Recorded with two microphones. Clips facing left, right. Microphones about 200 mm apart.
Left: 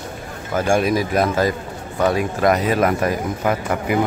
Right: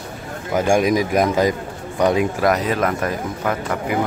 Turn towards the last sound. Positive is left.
turn(degrees=10)  # may be behind; listen again after turning